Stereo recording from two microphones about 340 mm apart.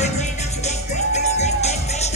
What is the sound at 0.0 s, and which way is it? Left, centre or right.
Music, centre.